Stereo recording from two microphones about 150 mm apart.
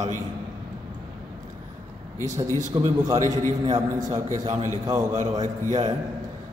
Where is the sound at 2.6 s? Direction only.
50° right (ahead or behind).